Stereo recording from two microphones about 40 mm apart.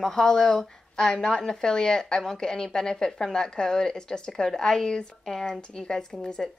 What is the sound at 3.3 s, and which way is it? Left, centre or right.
A woman's voice, centre.